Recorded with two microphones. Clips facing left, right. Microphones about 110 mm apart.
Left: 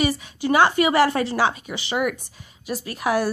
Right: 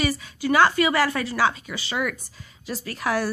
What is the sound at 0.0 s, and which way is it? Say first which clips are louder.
A woman's voice: left 2 dB; 20° left (ahead or behind).